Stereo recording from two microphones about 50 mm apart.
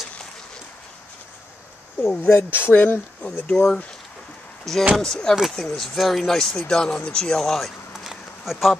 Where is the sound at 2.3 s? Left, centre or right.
Left.